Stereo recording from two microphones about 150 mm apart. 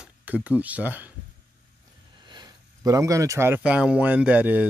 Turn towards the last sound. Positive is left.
turn(degrees=-10)  # may be behind; listen again after turning